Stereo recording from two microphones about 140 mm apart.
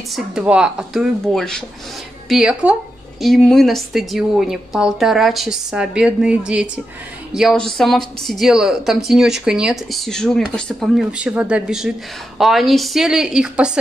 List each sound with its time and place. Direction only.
0.1 s a woman's voice: 5° right (ahead or behind)